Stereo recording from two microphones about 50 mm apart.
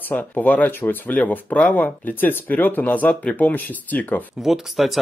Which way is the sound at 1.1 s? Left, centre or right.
Left.